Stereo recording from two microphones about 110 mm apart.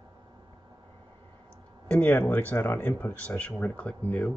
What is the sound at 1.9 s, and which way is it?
Speech, 15° left (ahead or behind).